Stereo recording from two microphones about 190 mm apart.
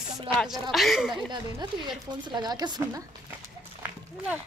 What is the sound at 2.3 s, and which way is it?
Speech, 20° right (ahead or behind).